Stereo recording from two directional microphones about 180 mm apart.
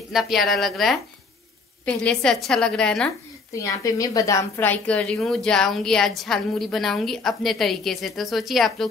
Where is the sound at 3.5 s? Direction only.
20° left (ahead or behind); by 8.9 s centre (ahead or behind).